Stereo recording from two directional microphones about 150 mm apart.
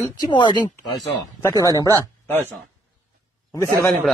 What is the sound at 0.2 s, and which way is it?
Speech, 30° left (ahead or behind).